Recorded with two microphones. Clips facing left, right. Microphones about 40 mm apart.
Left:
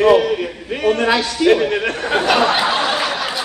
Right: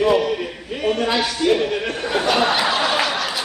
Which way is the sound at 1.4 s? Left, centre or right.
Left.